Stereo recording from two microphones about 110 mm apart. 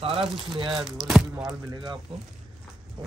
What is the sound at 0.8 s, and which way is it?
Speech, centre (ahead or behind).